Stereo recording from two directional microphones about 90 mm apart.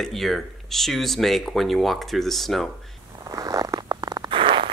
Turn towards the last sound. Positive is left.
turn(degrees=-75)  # may be behind; listen again after turning